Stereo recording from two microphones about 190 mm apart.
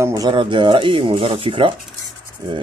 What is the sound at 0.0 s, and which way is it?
Speech, 20° right (ahead or behind).